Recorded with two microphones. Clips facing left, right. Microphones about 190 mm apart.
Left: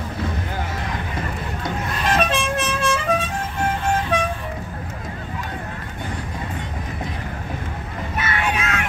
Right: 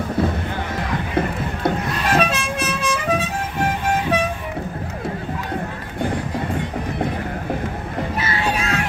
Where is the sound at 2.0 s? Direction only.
5° right (ahead or behind).